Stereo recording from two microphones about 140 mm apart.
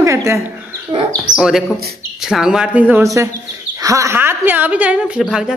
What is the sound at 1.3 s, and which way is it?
Speech, 5° right (ahead or behind).